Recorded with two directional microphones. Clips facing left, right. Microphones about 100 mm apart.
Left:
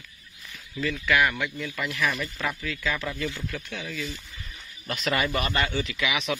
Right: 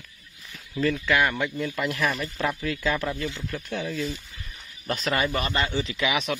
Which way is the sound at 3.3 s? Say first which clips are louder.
Right 1 dB; 20° right (ahead or behind).